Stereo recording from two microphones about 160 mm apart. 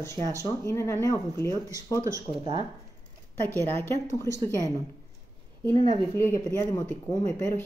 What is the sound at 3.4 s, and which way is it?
Speech, 10° left (ahead or behind).